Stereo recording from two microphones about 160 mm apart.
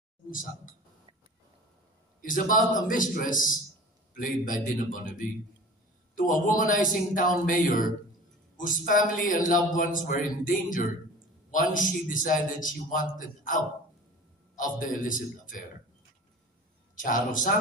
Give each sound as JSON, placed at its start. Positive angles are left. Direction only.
{"t": 0.3, "sound": "a man's voice", "side_deg": 60}
{"t": 2.2, "sound": "a man's voice", "side_deg": 55}
{"t": 16.9, "sound": "a man's voice", "side_deg": 55}